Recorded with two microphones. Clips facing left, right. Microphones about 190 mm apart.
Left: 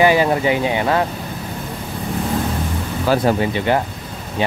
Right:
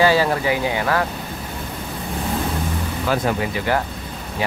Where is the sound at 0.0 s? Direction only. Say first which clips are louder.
Left 3 dB; 20° left (ahead or behind).